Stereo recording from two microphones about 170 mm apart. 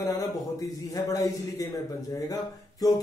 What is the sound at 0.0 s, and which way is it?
A man's voice, 20° left (ahead or behind).